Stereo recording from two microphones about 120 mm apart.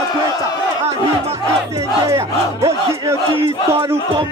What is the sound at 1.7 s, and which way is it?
Music, 25° right (ahead or behind).